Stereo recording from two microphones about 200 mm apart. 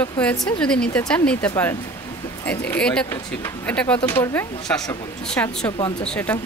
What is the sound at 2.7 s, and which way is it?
A woman's voice, 5° left (ahead or behind).